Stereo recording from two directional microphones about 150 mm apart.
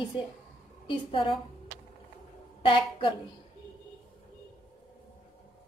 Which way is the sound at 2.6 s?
35° left (ahead or behind).